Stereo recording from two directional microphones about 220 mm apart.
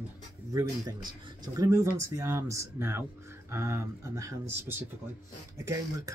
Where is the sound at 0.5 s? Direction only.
15° right (ahead or behind).